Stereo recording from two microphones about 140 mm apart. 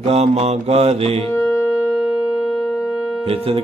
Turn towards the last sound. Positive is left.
turn(degrees=-45)  # may be behind; listen again after turning